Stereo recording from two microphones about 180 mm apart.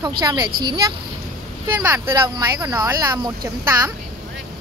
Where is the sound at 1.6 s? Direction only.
15° right (ahead or behind).